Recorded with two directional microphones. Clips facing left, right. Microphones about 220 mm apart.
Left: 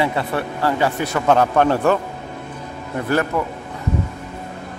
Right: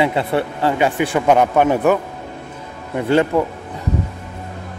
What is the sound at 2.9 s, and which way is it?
Speech, 20° right (ahead or behind).